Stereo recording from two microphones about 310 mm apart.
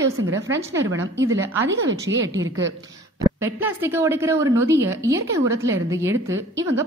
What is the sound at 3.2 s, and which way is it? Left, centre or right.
A woman's voice, centre.